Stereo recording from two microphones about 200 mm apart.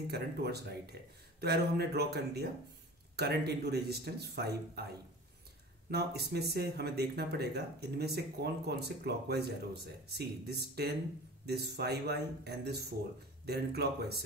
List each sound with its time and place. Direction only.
0.1 s speech: 55° right (ahead or behind)